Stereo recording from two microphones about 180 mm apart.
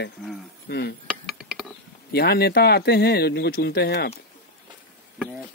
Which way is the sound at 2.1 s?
60° left (ahead or behind).